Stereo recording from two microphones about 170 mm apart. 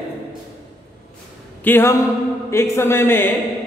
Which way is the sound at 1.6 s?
15° left (ahead or behind).